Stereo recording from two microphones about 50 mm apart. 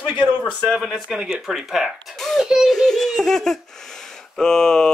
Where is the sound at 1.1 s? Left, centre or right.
Centre.